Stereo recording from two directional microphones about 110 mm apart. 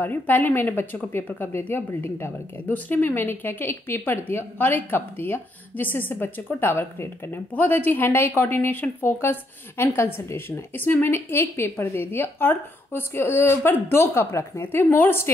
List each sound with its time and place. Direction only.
0.0 s a woman's voice: 15° left (ahead or behind)